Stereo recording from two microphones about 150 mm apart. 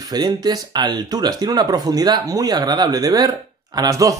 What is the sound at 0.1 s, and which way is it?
Speech, 25° right (ahead or behind).